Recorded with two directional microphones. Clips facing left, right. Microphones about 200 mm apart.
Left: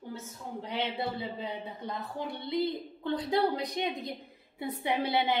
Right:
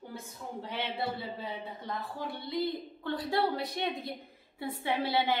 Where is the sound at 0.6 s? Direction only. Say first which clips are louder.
Left 2 dB; 15° left (ahead or behind).